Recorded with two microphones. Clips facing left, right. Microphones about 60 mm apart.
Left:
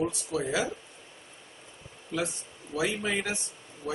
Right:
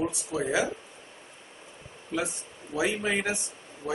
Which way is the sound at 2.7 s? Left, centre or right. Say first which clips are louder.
Right 2 dB; centre.